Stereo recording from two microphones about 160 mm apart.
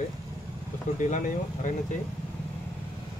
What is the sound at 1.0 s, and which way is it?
Speech, 50° left (ahead or behind).